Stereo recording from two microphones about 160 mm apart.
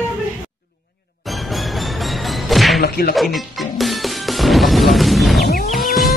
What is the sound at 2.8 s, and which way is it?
Music, 80° left.